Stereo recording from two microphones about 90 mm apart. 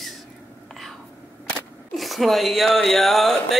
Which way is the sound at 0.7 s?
5° left (ahead or behind).